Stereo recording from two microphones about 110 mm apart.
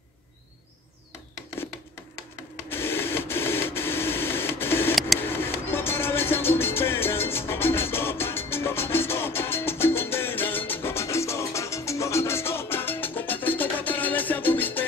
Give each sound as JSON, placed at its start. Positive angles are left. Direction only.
{"t": 2.7, "sound": "printer", "side_deg": 20}
{"t": 5.2, "sound": "music", "side_deg": 20}